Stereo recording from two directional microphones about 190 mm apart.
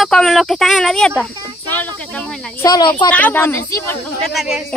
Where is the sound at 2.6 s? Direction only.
20° left (ahead or behind).